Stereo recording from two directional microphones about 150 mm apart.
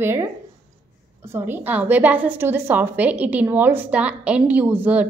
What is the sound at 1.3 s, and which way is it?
A woman's voice, 10° right (ahead or behind).